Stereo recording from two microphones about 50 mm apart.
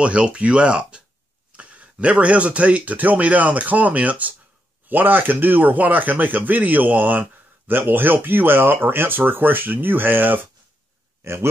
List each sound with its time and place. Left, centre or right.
0.0 s speech: right
11.2 s a man's voice: right